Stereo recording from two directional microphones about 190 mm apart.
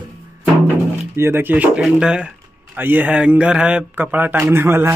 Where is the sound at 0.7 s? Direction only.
10° right (ahead or behind).